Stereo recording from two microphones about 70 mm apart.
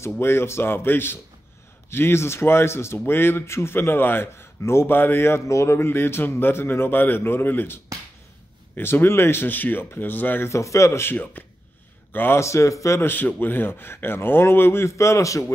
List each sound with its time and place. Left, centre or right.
0.2 s speech: left
10.5 s a man's voice: left
12.4 s a man's voice: left
13.0 s speech: left